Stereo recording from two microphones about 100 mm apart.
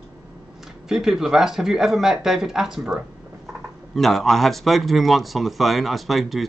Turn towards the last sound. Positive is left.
turn(degrees=0)  # may be behind; listen again after turning